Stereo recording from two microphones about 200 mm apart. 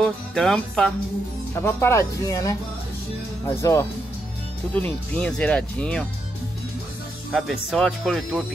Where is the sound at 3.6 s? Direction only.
15° left (ahead or behind).